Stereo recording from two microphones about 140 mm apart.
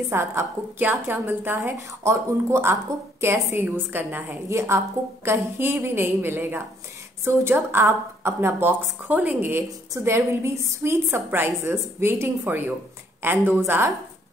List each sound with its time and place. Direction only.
0.1 s a woman's voice: 20° right (ahead or behind)